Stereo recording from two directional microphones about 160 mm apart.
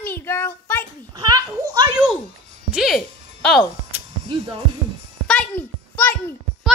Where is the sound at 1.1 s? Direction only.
25° right (ahead or behind).